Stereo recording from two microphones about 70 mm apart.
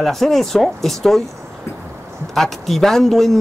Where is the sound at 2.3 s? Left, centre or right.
Centre.